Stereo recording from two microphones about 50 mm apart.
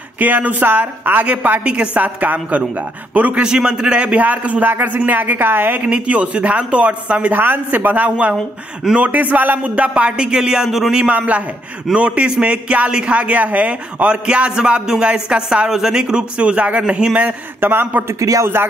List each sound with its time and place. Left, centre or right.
0.2 s speech: right
1.6 s speech: right
2.0 s speech: right
3.4 s speech: centre; by 5.8 s right
5.8 s speech: right
7.3 s speech: right; by 11.1 s centre
11.1 s speech: right
14.2 s speech: centre
17.6 s speech: right